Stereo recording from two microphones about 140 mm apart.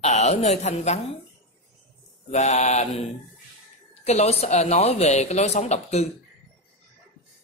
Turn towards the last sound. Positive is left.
turn(degrees=50)  # may be behind; listen again after turning